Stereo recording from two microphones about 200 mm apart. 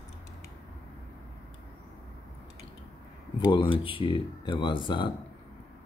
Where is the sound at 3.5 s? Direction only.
25° left (ahead or behind).